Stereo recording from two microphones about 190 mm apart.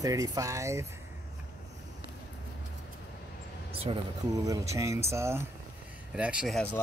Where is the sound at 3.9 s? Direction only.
25° right (ahead or behind).